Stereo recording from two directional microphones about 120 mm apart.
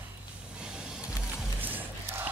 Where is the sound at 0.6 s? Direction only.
5° right (ahead or behind).